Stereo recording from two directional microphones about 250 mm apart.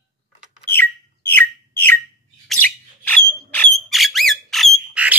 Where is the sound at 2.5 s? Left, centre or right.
Centre.